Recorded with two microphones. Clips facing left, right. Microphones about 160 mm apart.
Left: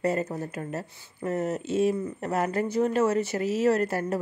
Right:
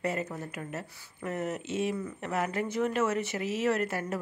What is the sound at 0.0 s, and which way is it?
Speech, 35° left (ahead or behind).